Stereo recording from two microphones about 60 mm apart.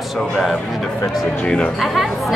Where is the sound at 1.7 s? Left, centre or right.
Centre.